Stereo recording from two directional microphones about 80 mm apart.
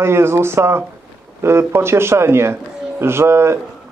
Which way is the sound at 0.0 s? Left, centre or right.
Right.